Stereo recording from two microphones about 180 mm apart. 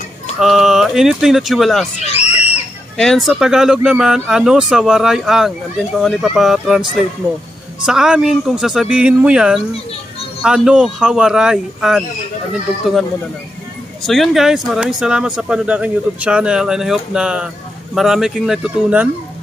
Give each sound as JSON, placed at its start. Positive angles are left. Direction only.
{"t": 0.4, "sound": "speech", "side_deg": 0}
{"t": 2.0, "sound": "screaming", "side_deg": 35}
{"t": 3.0, "sound": "speech", "side_deg": 0}
{"t": 14.0, "sound": "speech", "side_deg": 0}